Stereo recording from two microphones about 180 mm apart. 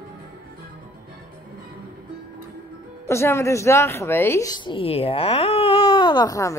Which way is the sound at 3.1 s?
15° left (ahead or behind).